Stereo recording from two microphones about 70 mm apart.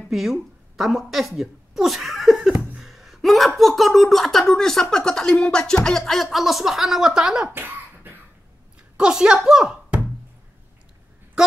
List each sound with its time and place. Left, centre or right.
0.1 s a woman's voice: centre
7.5 s a sound: right
8.9 s a woman's voice: centre